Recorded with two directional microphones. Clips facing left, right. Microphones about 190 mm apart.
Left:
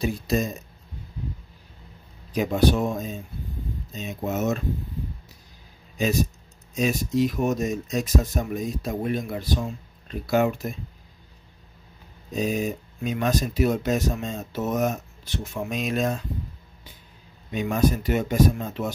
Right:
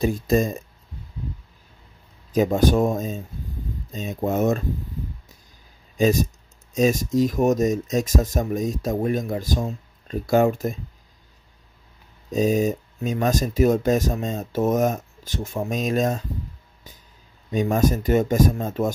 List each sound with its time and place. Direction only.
0.0 s speech: 50° right (ahead or behind)
2.3 s speech: 45° right (ahead or behind)
5.9 s speech: 45° right (ahead or behind)
12.3 s speech: 45° right (ahead or behind)
17.5 s speech: 45° right (ahead or behind)